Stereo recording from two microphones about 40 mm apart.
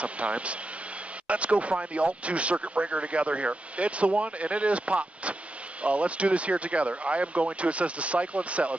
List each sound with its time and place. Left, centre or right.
0.0 s speech: right